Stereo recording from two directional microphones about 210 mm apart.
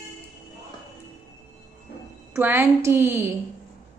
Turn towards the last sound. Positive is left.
turn(degrees=-10)  # may be behind; listen again after turning